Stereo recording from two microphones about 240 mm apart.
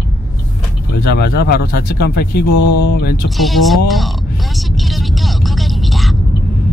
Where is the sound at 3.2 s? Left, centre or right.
Centre.